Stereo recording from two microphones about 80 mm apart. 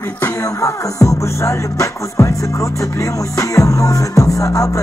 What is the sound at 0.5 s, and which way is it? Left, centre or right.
Music, left.